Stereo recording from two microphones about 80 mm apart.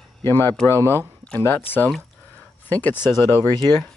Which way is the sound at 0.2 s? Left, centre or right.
Left.